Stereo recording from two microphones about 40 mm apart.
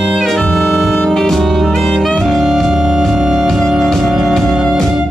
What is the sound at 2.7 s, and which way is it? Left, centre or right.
Music, centre.